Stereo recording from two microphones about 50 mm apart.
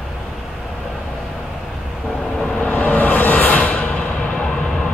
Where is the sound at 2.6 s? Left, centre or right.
Left.